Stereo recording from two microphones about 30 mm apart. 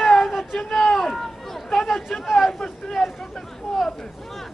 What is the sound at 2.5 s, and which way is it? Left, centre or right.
Speech, centre.